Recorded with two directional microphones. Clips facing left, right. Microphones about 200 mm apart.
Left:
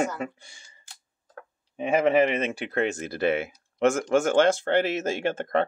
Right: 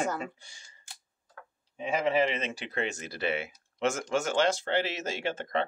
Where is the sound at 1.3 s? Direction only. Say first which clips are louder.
Left 6 dB; 55° left (ahead or behind).